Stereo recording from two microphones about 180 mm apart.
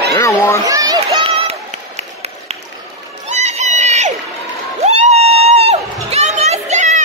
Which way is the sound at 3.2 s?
40° right (ahead or behind).